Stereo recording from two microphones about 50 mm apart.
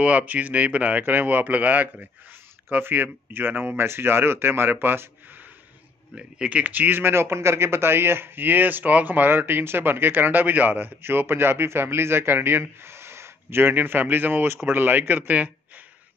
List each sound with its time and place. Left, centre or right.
0.0 s speech: right
6.1 s speech: centre
6.6 s speech: right